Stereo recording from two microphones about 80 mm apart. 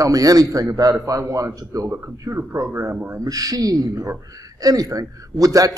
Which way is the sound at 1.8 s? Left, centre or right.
Right.